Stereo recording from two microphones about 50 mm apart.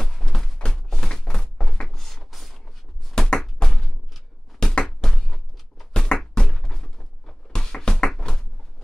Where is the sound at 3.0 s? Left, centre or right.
Centre.